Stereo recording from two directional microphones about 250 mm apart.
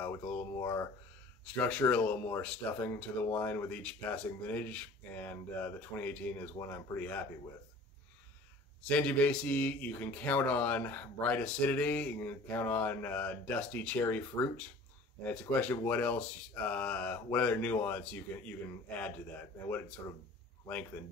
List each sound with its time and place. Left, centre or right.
0.0 s speech: centre
8.8 s speech: centre